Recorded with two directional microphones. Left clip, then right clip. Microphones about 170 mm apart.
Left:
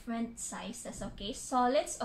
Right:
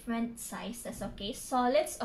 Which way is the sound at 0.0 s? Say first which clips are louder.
Right 2 dB; 20° right (ahead or behind).